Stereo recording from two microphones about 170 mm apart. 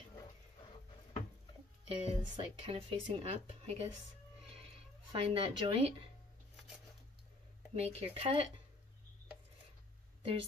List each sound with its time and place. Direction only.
1.9 s speech: 30° right (ahead or behind)
5.1 s speech: 30° right (ahead or behind)
7.7 s speech: 35° right (ahead or behind)